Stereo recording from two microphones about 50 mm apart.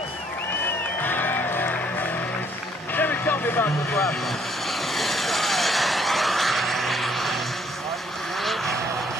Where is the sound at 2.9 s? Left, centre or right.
Left.